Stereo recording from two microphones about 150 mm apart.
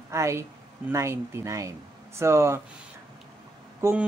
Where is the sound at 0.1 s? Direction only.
20° right (ahead or behind).